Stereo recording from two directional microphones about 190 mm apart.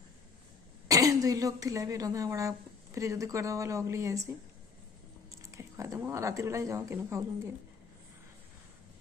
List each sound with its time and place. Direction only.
0.8 s a woman's voice: 20° right (ahead or behind)
5.3 s speech: 15° right (ahead or behind)